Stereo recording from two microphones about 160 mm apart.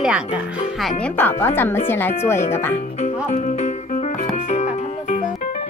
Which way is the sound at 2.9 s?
50° left (ahead or behind).